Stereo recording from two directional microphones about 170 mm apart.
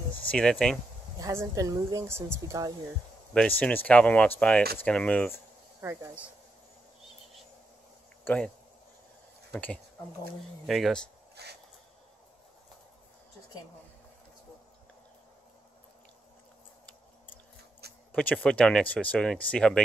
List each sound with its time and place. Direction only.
0.3 s speech: 5° left (ahead or behind)
1.2 s a woman's voice: 20° right (ahead or behind)
3.3 s speech: 10° left (ahead or behind)
5.8 s speech: 15° right (ahead or behind)
8.2 s a sound: 10° left (ahead or behind)
9.5 s speech: 5° left (ahead or behind)
11.4 s a sound: 75° right (ahead or behind)
18.1 s speech: 5° left (ahead or behind)